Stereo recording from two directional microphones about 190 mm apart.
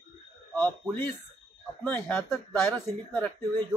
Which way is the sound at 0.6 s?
10° left (ahead or behind).